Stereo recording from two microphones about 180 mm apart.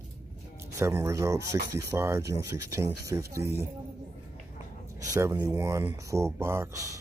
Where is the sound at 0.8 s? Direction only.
15° right (ahead or behind).